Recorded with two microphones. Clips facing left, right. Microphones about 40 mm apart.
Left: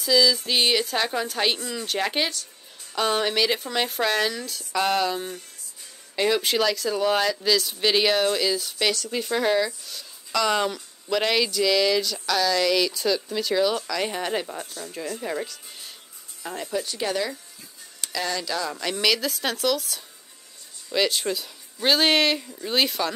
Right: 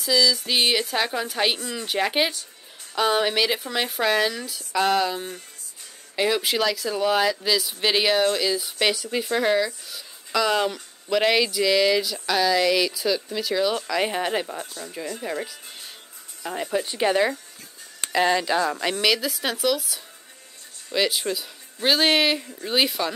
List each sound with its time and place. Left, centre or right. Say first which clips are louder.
0.0 s music: left 1 dB; centre
0.5 s speech: even; centre
8.5 s speech: right 2 dB; centre
16.7 s speech: right 5 dB; right
18.9 s speech: left 3 dB; centre